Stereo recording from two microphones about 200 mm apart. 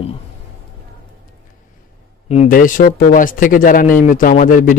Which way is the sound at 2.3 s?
40° left (ahead or behind).